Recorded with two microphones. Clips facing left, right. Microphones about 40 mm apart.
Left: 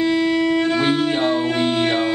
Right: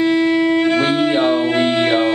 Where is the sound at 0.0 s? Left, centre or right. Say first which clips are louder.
Right 3 dB; centre.